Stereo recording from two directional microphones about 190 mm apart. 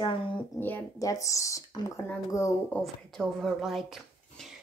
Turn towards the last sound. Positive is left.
turn(degrees=0)  # may be behind; listen again after turning